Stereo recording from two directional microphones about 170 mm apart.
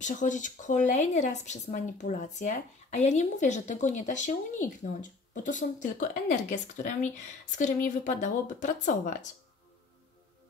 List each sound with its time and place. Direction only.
0.0 s speech: 45° left (ahead or behind)